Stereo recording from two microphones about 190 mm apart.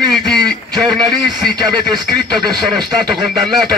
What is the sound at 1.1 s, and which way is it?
Speech, 20° right (ahead or behind).